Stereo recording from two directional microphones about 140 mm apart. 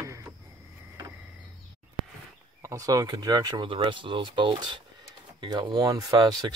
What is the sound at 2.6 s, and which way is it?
Speech, 25° right (ahead or behind).